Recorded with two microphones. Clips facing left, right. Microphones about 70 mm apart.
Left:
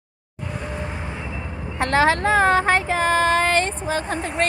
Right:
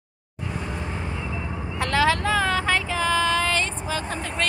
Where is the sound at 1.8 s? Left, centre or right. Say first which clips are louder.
Left 3 dB; left.